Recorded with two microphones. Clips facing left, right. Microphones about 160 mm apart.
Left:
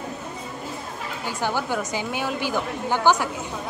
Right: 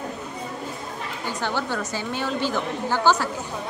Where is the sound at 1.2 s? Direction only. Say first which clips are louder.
Left 1 dB; 10° left (ahead or behind).